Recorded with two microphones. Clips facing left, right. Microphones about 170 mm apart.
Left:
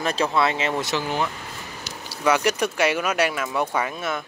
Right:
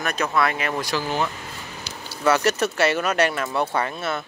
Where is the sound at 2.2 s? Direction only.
10° left (ahead or behind).